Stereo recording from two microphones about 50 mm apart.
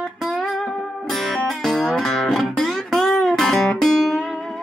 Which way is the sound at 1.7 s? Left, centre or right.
Centre.